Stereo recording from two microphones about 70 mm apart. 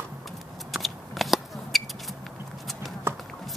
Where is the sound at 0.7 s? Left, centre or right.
Centre.